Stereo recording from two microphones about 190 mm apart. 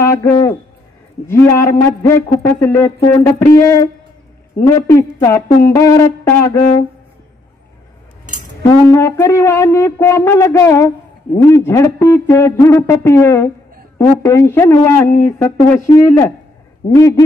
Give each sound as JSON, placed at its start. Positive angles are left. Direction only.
{"t": 0.0, "sound": "speech", "side_deg": 15}
{"t": 8.8, "sound": "speech", "side_deg": 15}